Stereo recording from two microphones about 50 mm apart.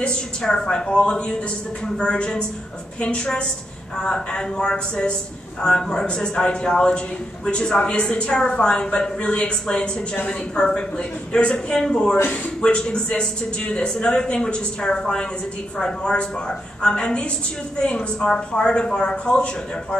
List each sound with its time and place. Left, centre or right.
0.0 s a man's voice: centre